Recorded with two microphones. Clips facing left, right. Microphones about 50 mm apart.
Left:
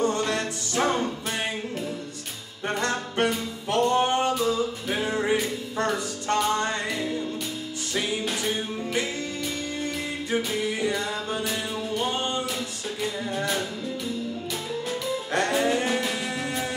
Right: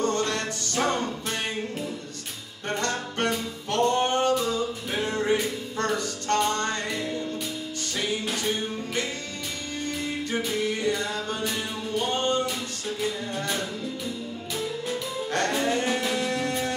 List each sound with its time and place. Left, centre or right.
0.0 s music: centre
2.7 s music: centre
10.3 s music: centre
14.9 s music: centre